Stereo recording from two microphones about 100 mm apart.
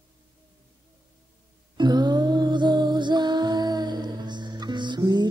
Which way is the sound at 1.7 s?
45° right (ahead or behind).